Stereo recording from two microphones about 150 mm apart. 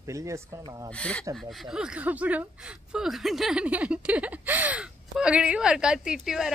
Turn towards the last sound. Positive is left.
turn(degrees=-5)  # may be behind; listen again after turning